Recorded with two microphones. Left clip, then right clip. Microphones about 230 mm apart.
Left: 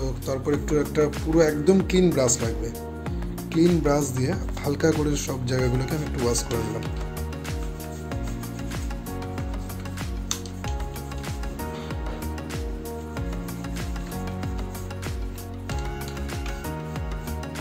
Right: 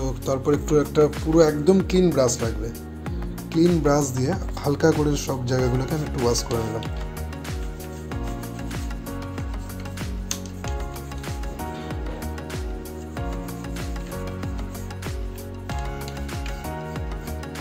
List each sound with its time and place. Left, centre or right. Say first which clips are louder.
0.3 s speech: right 4 dB; centre
3.5 s speech: right 2 dB; centre